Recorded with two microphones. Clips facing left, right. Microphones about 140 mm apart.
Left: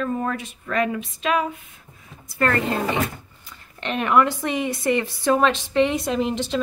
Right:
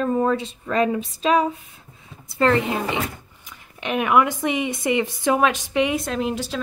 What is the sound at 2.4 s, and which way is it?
A woman's voice, 15° right (ahead or behind).